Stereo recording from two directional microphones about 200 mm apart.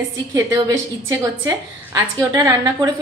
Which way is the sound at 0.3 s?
15° right (ahead or behind).